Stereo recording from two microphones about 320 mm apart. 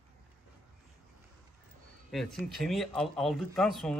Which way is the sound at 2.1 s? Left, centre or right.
Centre.